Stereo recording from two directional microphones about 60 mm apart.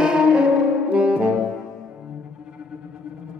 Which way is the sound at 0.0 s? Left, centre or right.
Centre.